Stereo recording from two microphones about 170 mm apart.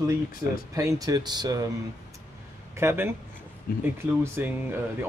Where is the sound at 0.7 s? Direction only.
20° right (ahead or behind).